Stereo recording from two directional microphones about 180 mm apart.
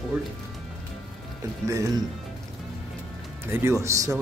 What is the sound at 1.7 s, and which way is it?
Speech, 20° right (ahead or behind).